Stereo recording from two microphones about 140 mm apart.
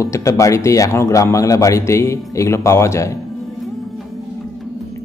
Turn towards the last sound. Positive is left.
turn(degrees=20)  # may be behind; listen again after turning